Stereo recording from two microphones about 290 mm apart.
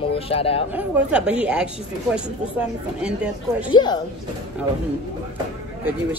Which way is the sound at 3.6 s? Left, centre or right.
Centre.